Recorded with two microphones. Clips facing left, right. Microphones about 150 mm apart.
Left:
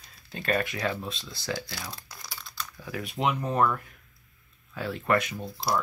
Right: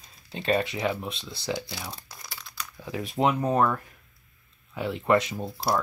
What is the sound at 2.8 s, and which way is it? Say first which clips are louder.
Speech: right 3 dB; 20° right (ahead or behind).